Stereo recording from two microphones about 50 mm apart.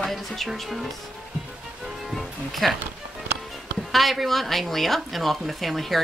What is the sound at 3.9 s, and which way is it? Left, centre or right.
Speech, centre.